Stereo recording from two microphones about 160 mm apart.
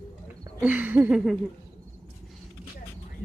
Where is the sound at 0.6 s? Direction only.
10° right (ahead or behind).